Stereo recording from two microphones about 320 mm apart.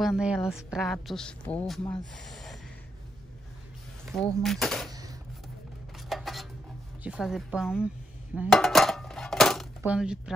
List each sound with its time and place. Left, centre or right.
0.0 s a woman's voice: centre
4.1 s a woman's voice: centre
6.0 s cutlery: centre
7.0 s a woman's voice: centre
8.4 s dishes: centre